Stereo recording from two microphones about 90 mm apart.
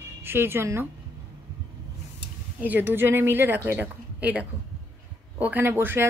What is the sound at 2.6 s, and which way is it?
A woman's voice, 20° right (ahead or behind).